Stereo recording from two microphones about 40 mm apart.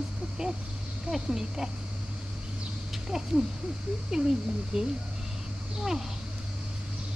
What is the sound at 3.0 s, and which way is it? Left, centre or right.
Speech, centre.